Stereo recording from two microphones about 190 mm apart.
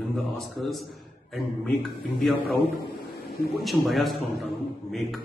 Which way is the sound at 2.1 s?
Centre (ahead or behind).